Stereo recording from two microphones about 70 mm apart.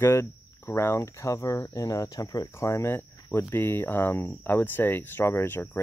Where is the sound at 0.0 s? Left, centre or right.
Left.